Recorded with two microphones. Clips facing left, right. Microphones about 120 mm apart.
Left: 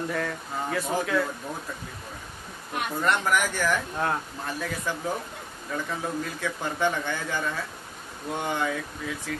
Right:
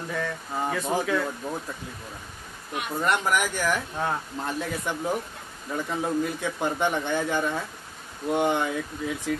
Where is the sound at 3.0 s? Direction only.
15° right (ahead or behind).